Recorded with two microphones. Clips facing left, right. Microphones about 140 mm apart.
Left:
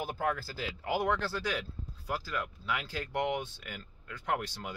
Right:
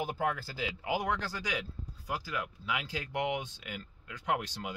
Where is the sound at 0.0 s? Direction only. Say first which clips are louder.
Even; 15° right (ahead or behind).